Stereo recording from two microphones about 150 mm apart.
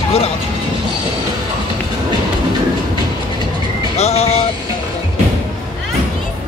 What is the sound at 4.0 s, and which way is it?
Vehicle, 45° left (ahead or behind).